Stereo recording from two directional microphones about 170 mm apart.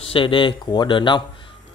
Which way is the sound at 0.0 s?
30° left (ahead or behind).